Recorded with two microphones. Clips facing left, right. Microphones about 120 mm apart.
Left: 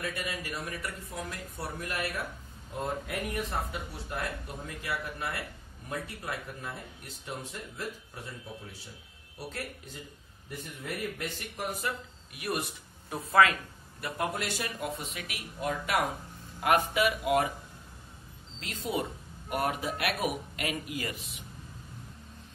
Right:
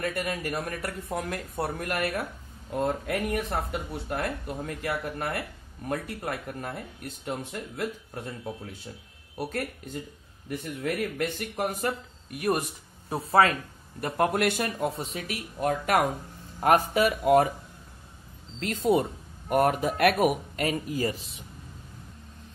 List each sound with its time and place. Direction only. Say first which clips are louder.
0.0 s speech: right 6 dB; 55° right (ahead or behind)
9.4 s speech: right 8 dB; 60° right (ahead or behind)
10.8 s speech: right 7 dB; 65° right (ahead or behind); by 12.6 s 45° right (ahead or behind)
13.1 s speech: right 2 dB; 30° right (ahead or behind)
14.0 s speech: right 8 dB; 55° right (ahead or behind)
15.0 s speech: right 6 dB; 35° right (ahead or behind)
18.6 s speech: right 9 dB; 50° right (ahead or behind); by 21.5 s 30° right (ahead or behind)